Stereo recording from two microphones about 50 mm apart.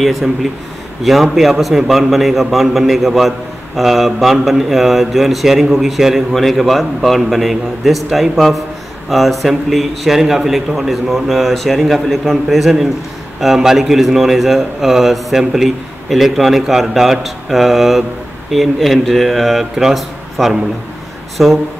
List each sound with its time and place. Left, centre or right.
1.0 s a man's voice: centre